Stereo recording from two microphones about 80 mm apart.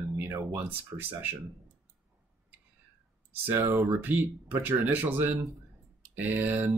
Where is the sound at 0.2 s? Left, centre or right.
Right.